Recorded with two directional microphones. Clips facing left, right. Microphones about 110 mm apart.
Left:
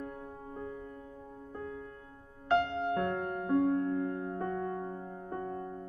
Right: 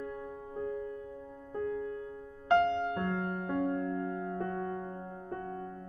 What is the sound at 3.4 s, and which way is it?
Music, 20° left (ahead or behind).